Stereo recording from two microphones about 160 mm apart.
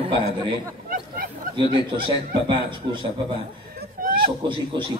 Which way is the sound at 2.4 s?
30° right (ahead or behind).